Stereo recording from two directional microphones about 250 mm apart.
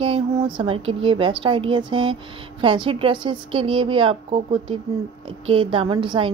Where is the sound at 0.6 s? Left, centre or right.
Right.